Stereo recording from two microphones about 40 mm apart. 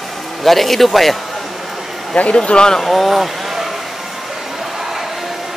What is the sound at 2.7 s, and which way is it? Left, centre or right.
Speech, centre.